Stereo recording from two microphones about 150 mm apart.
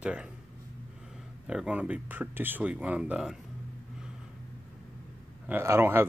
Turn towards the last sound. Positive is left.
turn(degrees=-15)  # may be behind; listen again after turning